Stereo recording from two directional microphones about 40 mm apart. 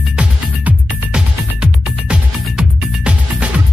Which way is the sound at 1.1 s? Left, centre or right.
Right.